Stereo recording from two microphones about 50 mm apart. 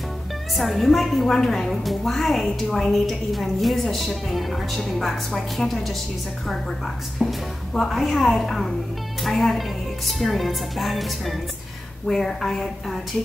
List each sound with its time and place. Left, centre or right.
0.6 s a woman's voice: centre
7.2 s a woman's voice: centre
7.7 s a woman's voice: centre